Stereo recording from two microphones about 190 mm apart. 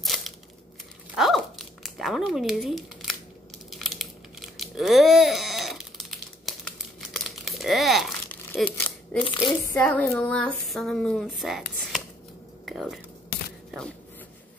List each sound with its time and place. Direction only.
0.0 s a sound: centre (ahead or behind)
3.7 s crumpling: centre (ahead or behind)
8.5 s speech: 5° left (ahead or behind)
9.2 s speech: 25° left (ahead or behind)
9.8 s speech: 5° left (ahead or behind)
12.6 s speech: centre (ahead or behind)